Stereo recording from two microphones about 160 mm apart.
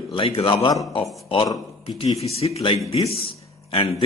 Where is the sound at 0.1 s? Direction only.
30° left (ahead or behind).